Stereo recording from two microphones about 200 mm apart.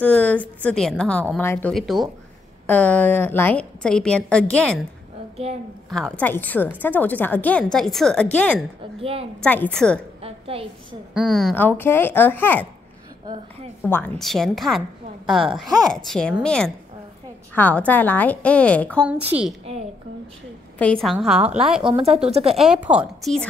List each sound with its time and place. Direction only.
0.0 s a woman's voice: 5° left (ahead or behind)
5.9 s a woman's voice: 5° left (ahead or behind)
9.0 s speech: 30° right (ahead or behind)
9.4 s a woman's voice: 5° left (ahead or behind)
10.2 s a sound: 30° right (ahead or behind)
11.1 s a woman's voice: centre (ahead or behind)
11.5 s a woman's voice: 10° left (ahead or behind)
13.8 s a woman's voice: 10° left (ahead or behind)
19.0 s a woman's voice: 5° right (ahead or behind)
20.8 s a woman's voice: centre (ahead or behind)
21.8 s speech: 30° right (ahead or behind)
22.6 s a woman's voice: 5° right (ahead or behind)